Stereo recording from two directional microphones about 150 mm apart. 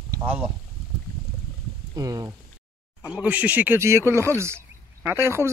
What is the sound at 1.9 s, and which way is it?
Speech, 25° right (ahead or behind).